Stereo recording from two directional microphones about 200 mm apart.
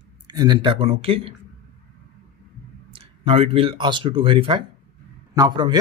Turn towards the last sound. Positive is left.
turn(degrees=-20)  # may be behind; listen again after turning